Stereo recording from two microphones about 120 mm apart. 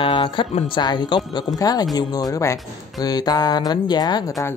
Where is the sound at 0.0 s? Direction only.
45° left (ahead or behind).